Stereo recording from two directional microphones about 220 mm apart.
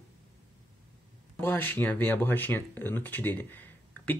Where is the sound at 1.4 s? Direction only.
10° left (ahead or behind).